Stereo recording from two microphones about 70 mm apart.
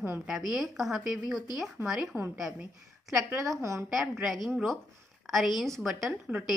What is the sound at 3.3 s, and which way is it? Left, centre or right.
Speech, right.